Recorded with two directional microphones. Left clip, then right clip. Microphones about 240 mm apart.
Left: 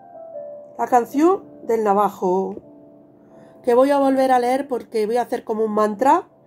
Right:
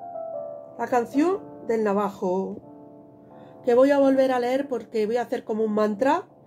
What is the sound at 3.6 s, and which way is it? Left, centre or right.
Speech, left.